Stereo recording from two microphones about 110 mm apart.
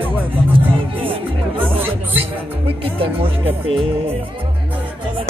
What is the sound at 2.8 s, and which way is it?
Speech, 60° right (ahead or behind).